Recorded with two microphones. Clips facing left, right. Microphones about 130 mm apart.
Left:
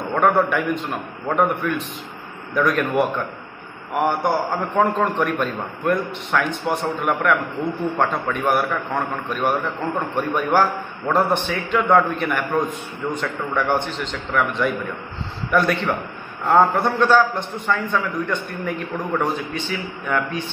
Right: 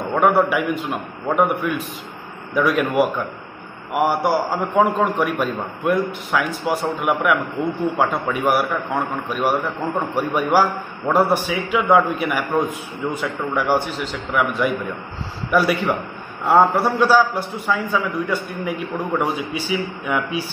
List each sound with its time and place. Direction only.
0.1 s a man's voice: 5° right (ahead or behind)